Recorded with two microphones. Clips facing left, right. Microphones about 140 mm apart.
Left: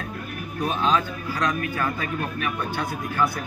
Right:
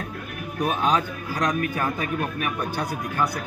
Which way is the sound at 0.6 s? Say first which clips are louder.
Even; 15° right (ahead or behind).